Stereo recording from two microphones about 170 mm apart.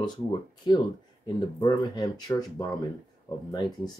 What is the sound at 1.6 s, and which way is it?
Speech, 25° left (ahead or behind).